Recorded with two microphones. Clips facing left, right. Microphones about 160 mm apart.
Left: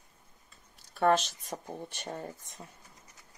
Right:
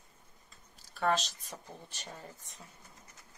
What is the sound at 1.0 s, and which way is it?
Speech, 55° left (ahead or behind).